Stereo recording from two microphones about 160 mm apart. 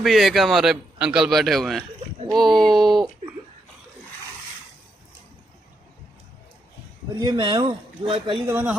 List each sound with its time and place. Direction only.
0.0 s a man's voice: centre (ahead or behind)
7.2 s speech: 25° right (ahead or behind)
8.5 s speech: 15° right (ahead or behind)